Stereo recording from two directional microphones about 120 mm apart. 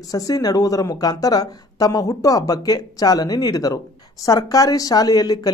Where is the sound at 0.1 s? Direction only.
30° left (ahead or behind).